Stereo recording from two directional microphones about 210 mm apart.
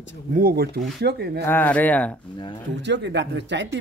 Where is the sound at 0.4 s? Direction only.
45° right (ahead or behind).